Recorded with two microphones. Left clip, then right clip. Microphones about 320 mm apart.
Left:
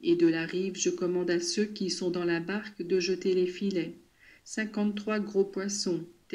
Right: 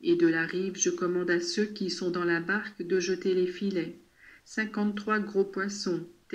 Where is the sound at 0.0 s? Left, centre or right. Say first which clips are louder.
Right 1 dB; centre.